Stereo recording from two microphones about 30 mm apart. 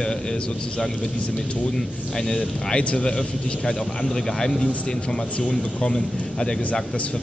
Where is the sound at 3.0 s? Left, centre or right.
Left.